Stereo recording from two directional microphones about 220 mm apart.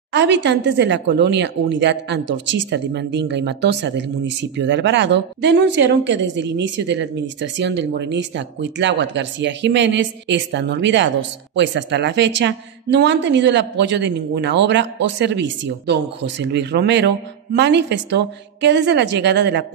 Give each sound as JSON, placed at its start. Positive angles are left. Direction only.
{"t": 0.1, "sound": "speech", "side_deg": -55}